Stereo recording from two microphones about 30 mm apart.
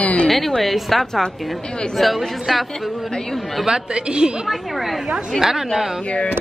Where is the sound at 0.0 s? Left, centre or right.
Left.